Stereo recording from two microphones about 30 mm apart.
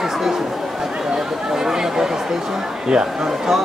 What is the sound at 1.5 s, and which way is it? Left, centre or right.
Speech, centre.